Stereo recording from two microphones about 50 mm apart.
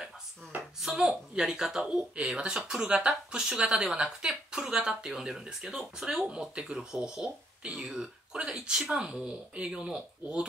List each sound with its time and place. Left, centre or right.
0.7 s speech: centre